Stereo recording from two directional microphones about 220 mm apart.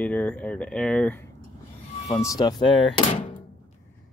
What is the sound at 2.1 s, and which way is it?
Speech, 15° left (ahead or behind).